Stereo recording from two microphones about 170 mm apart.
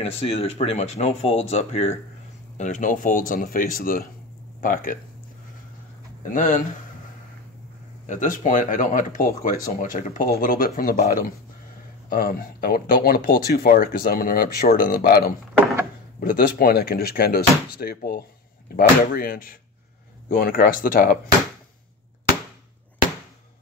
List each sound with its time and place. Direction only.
0.0 s speech: 35° left (ahead or behind); by 4.9 s 55° left (ahead or behind)
6.2 s speech: 50° left (ahead or behind)
8.1 s speech: 50° left (ahead or behind)